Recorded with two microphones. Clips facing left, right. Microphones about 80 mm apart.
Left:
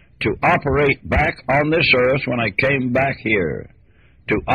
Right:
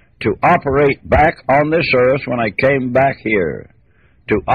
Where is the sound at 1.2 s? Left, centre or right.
Right.